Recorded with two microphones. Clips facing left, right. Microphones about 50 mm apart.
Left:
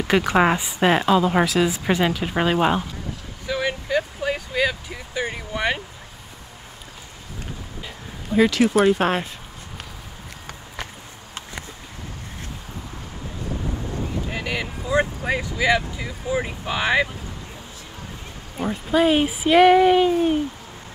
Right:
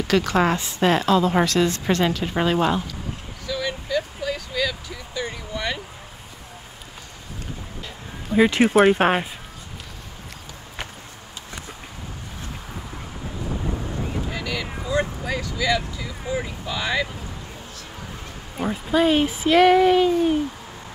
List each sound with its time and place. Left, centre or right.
0.0 s a woman's voice: left
3.4 s vehicle: left
8.5 s speech: right
14.3 s a sound: left
14.9 s vehicle: left
18.6 s speech: centre
18.9 s a woman's voice: centre